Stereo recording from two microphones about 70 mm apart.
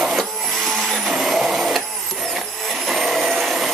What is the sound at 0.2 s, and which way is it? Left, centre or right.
Printer, centre.